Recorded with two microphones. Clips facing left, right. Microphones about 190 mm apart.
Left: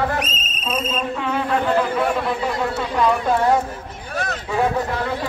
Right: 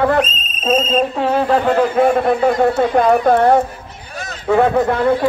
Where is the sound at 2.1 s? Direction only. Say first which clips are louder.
Right 8 dB; 55° right (ahead or behind).